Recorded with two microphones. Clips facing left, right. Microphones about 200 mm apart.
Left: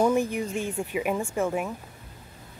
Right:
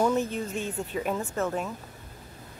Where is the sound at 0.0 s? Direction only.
10° left (ahead or behind).